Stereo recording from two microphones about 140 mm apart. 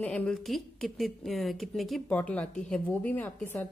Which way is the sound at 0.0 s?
10° left (ahead or behind).